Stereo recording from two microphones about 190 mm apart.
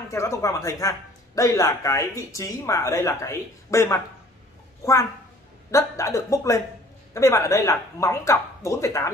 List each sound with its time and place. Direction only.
0.1 s speech: 15° left (ahead or behind)
5.7 s speech: 15° left (ahead or behind)